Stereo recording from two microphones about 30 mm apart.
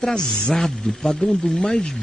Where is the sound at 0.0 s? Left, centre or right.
Left.